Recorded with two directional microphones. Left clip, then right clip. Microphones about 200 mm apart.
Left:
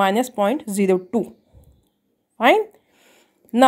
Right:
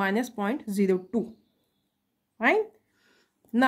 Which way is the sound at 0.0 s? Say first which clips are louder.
Left 10 dB; 25° left (ahead or behind).